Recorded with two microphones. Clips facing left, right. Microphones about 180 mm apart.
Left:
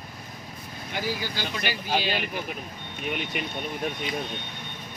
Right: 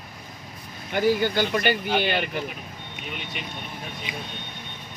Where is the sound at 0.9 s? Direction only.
55° right (ahead or behind).